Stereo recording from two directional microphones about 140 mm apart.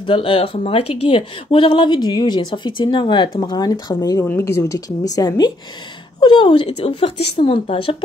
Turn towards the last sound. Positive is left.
turn(degrees=40)  # may be behind; listen again after turning